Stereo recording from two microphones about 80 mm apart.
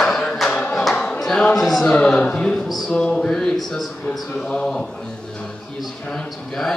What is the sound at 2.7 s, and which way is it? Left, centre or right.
A man's voice, centre.